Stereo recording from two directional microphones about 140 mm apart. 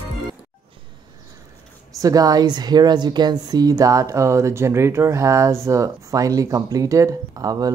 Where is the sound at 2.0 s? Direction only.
25° right (ahead or behind).